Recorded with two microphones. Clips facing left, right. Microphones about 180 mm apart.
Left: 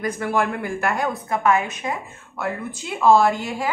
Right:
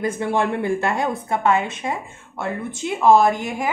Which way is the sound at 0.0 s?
25° right (ahead or behind).